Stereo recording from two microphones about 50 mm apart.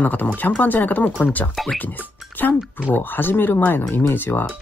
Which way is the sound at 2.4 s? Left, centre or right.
Left.